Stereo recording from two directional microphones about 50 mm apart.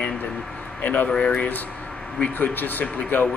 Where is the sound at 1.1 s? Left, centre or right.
Left.